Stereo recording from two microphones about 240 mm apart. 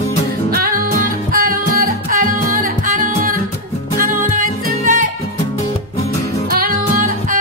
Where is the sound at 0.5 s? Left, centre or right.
Right.